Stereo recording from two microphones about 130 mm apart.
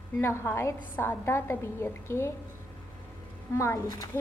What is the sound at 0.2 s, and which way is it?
A woman's voice, 20° left (ahead or behind).